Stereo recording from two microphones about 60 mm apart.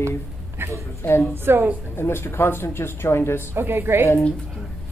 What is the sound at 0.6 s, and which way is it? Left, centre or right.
Speech, right.